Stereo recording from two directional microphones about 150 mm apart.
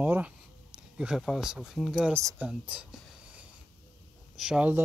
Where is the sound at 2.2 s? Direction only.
20° right (ahead or behind).